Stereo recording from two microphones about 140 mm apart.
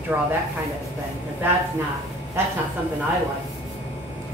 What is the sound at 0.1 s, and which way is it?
Speech, 15° right (ahead or behind).